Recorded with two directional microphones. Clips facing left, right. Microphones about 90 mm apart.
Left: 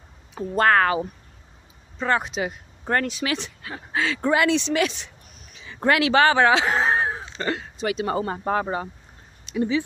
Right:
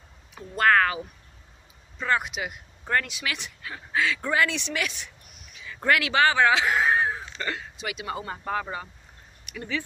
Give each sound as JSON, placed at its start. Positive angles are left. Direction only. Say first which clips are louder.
{"t": 0.3, "sound": "speech", "louder": "left 3 dB", "side_deg": 35}
{"t": 9.5, "sound": "speech", "louder": "left 9 dB", "side_deg": 20}